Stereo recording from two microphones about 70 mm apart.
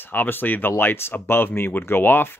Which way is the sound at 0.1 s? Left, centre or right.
Left.